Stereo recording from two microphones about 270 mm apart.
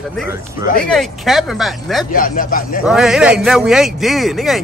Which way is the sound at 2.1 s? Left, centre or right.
Left.